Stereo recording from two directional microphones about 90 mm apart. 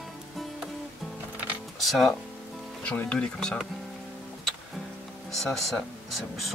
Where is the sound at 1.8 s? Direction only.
Centre (ahead or behind).